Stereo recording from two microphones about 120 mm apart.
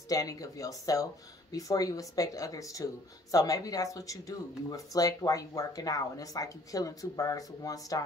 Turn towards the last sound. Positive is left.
turn(degrees=30)  # may be behind; listen again after turning